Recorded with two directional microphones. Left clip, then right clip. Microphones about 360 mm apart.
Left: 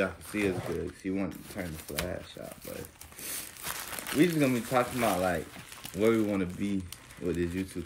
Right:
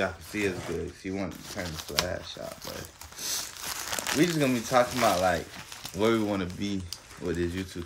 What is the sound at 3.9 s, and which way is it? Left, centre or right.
Speech, centre.